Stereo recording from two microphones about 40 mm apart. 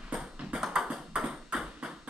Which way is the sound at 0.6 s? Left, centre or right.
Centre.